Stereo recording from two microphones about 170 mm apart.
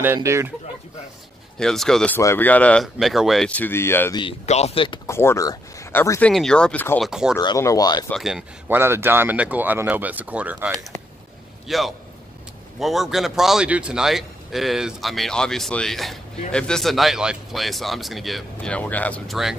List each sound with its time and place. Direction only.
0.0 s speech: 15° right (ahead or behind)
1.6 s speech: 5° left (ahead or behind)
4.2 s speech: 35° left (ahead or behind)
5.0 s speech: 15° left (ahead or behind)
7.1 s speech: 5° right (ahead or behind)
7.3 s speech: 20° left (ahead or behind)
8.1 s speech: centre (ahead or behind)
8.6 s a man's voice: 15° right (ahead or behind)